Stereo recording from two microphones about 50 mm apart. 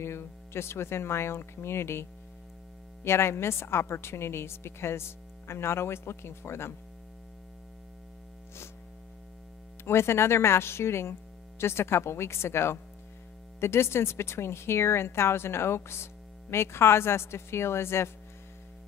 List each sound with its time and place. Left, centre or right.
0.0 s a woman's voice: left
9.8 s a woman's voice: left